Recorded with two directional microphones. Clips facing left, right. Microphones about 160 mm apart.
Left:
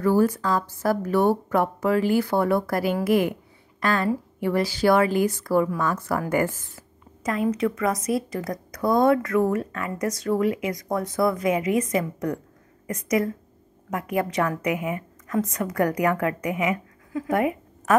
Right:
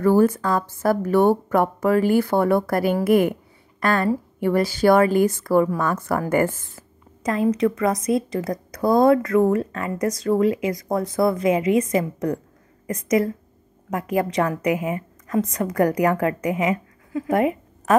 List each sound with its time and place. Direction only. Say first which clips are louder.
0.0 s a woman's voice: right 3 dB; 50° right (ahead or behind)
7.2 s a woman's voice: right 4 dB; 35° right (ahead or behind)